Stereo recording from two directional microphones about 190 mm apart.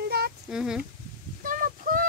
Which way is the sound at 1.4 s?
45° right (ahead or behind).